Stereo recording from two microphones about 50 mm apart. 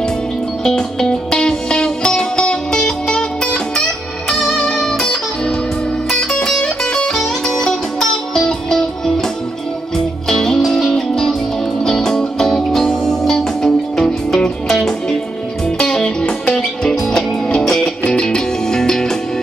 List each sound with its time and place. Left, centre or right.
0.7 s music: centre
18.0 s music: left